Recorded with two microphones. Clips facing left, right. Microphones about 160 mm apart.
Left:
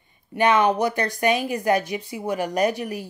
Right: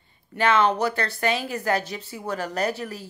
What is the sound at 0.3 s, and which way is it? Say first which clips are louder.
A woman's voice: left 2 dB; 15° left (ahead or behind).